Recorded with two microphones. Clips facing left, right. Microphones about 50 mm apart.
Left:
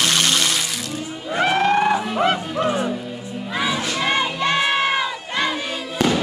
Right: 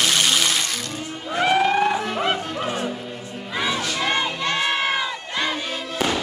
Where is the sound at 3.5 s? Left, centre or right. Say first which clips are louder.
Left 1 dB; centre.